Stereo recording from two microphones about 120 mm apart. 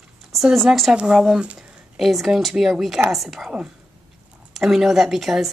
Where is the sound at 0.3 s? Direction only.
Centre (ahead or behind).